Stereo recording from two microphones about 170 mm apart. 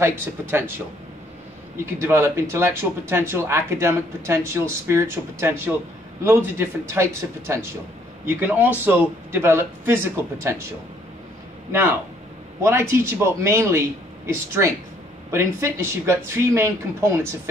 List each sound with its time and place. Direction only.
0.0 s speech: 15° right (ahead or behind)
2.0 s speech: 15° right (ahead or behind)
12.6 s speech: 15° right (ahead or behind)